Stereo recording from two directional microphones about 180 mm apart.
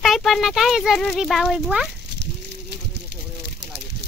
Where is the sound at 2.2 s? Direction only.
65° right (ahead or behind).